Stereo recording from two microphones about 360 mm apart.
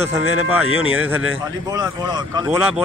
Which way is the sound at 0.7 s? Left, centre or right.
Right.